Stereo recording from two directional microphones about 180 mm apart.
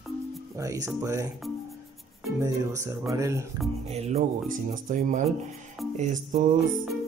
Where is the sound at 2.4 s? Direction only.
15° right (ahead or behind).